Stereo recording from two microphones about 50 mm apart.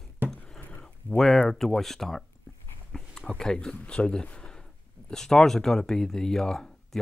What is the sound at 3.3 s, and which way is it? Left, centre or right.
Speech, centre.